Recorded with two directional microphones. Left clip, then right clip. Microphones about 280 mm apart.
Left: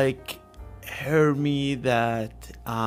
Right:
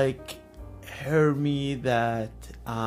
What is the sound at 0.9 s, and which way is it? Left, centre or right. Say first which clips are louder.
Speech: left 2 dB; centre.